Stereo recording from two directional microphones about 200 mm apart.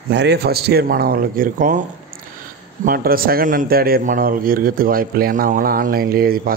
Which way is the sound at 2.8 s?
45° right (ahead or behind).